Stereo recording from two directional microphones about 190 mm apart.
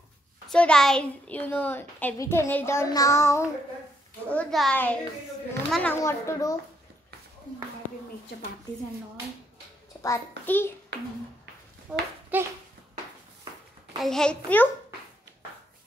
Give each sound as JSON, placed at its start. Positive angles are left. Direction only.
{"t": 0.5, "sound": "a woman's voice", "side_deg": 5}
{"t": 4.3, "sound": "a woman's voice", "side_deg": 5}
{"t": 10.0, "sound": "a woman's voice", "side_deg": 15}
{"t": 11.9, "sound": "a child's voice", "side_deg": -5}
{"t": 13.9, "sound": "a child's voice", "side_deg": 0}